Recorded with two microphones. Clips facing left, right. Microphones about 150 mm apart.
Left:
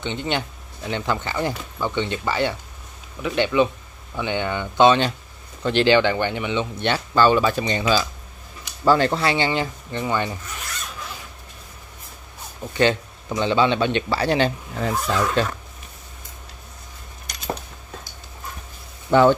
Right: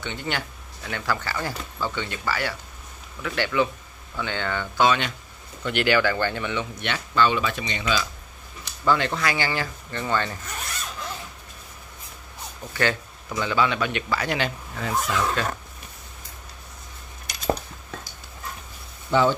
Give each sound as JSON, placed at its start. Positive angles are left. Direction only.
{"t": 0.0, "sound": "a man's voice", "side_deg": 20}
{"t": 6.9, "sound": "a man's voice", "side_deg": 40}
{"t": 12.7, "sound": "a man's voice", "side_deg": 20}
{"t": 19.0, "sound": "speech", "side_deg": 60}